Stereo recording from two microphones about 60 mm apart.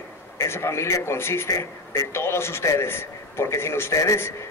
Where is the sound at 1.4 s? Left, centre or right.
Left.